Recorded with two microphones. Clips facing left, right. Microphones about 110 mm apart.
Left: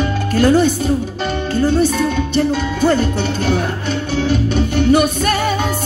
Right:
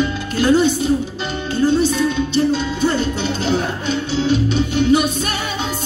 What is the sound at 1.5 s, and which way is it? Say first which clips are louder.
Music: even; 50° left (ahead or behind).